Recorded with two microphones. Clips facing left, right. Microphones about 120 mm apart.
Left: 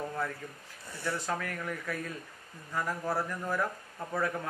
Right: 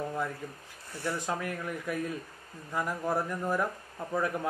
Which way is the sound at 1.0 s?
20° right (ahead or behind).